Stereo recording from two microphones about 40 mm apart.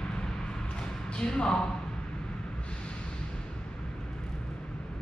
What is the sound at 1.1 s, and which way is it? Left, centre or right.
Speech, left.